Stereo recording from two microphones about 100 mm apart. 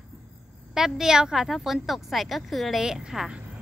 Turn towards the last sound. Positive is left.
turn(degrees=-5)  # may be behind; listen again after turning